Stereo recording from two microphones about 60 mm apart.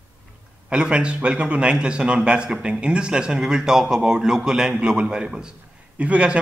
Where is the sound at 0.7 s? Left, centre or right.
Centre.